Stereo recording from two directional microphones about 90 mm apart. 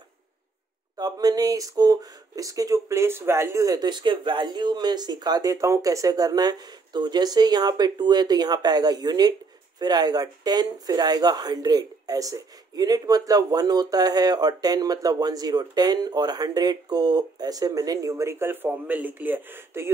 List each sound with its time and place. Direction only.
0.9 s speech: 45° right (ahead or behind); by 19.9 s 25° right (ahead or behind)